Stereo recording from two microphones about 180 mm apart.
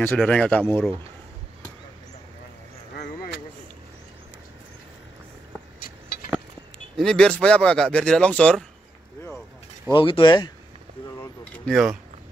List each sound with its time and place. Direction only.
0.0 s speech: 5° left (ahead or behind)
7.0 s speech: 5° left (ahead or behind)
9.9 s speech: 25° left (ahead or behind)
11.5 s speech: centre (ahead or behind)